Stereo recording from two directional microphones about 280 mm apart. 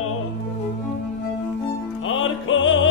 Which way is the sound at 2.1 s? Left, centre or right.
Left.